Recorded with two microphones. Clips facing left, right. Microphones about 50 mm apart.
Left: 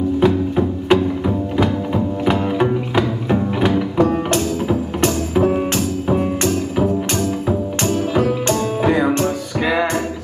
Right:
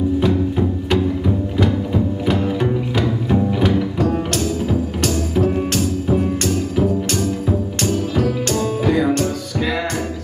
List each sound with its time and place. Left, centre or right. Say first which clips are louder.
0.2 s music: left 2 dB; centre
2.2 s music: left 4 dB; centre